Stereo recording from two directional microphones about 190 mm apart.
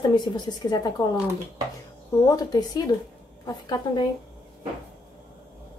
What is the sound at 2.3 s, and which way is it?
A woman's voice, 20° left (ahead or behind).